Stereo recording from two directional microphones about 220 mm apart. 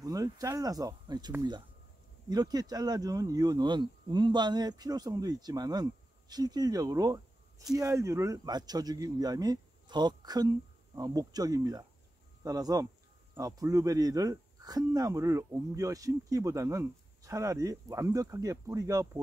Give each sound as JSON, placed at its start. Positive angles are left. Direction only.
{"t": 0.0, "sound": "speech", "side_deg": -15}